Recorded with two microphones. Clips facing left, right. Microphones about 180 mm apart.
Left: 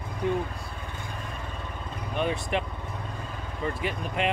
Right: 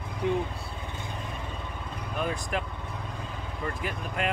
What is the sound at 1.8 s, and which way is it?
Vehicle, 15° left (ahead or behind).